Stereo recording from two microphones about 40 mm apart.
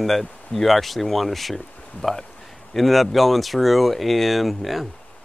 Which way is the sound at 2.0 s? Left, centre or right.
Left.